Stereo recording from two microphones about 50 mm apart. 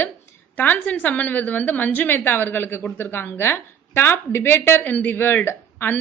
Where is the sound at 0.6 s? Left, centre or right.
Left.